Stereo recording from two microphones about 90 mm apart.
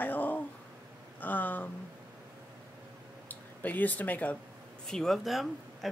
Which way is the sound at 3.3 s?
20° left (ahead or behind).